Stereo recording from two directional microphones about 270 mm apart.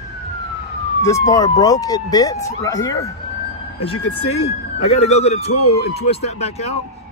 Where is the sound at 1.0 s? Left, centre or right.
Centre.